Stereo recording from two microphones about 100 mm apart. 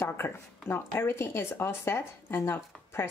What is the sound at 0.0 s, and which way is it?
A woman's voice, 25° left (ahead or behind).